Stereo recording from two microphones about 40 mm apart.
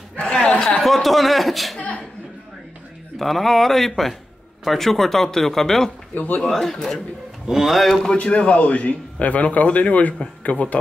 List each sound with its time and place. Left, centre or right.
0.1 s a sound: left
0.7 s chuckle: centre
3.2 s speech: centre
6.1 s speech: left
6.4 s speech: centre
7.4 s speech: centre
8.1 s a man's voice: left